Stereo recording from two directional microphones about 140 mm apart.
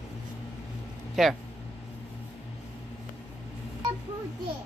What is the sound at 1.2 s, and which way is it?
Speech, centre (ahead or behind).